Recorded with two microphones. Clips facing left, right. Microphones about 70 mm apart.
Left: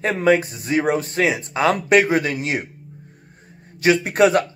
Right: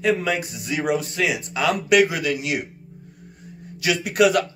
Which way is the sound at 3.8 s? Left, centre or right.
Left.